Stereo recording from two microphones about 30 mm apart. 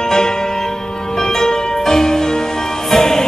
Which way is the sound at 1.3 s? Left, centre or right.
Centre.